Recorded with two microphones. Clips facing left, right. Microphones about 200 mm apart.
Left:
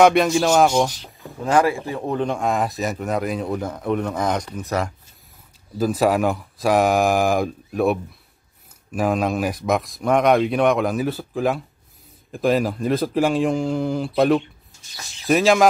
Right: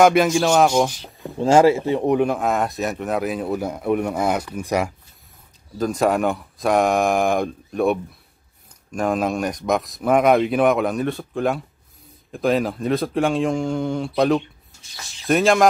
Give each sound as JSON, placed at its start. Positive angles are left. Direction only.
{"t": 0.0, "sound": "speech", "side_deg": 0}
{"t": 1.4, "sound": "speech", "side_deg": -25}
{"t": 2.2, "sound": "speech", "side_deg": -5}
{"t": 5.8, "sound": "speech", "side_deg": 5}